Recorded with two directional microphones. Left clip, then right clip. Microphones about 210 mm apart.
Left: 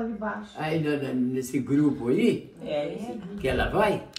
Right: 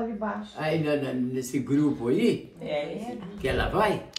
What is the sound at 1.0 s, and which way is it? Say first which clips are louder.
Speech: left 1 dB; 10° right (ahead or behind).